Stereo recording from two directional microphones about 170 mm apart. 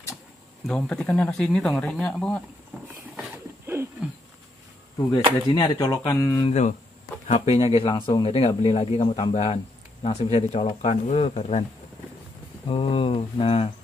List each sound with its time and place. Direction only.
0.7 s speech: 5° left (ahead or behind)
3.6 s a sound: 15° right (ahead or behind)
5.5 s speech: 20° left (ahead or behind)
6.4 s speech: 40° left (ahead or behind)
12.6 s speech: 30° left (ahead or behind)